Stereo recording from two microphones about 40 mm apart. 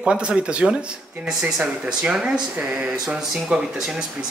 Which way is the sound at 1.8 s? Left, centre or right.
Centre.